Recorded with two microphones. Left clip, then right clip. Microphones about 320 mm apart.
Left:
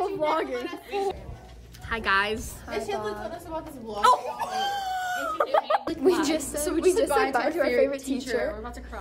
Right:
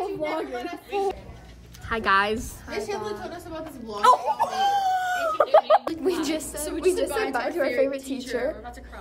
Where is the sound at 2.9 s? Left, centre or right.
Centre.